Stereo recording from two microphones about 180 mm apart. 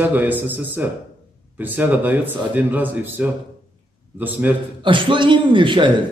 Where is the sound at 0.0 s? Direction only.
10° right (ahead or behind).